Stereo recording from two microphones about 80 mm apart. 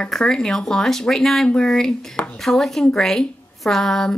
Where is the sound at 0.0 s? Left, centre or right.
Centre.